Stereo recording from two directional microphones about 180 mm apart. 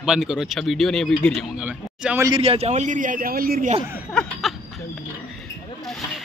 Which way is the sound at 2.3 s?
35° right (ahead or behind).